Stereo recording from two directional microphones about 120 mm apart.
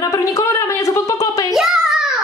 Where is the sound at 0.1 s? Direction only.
25° left (ahead or behind).